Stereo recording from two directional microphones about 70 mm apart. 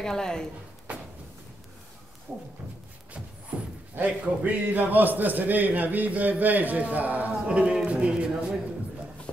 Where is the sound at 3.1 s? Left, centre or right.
Centre.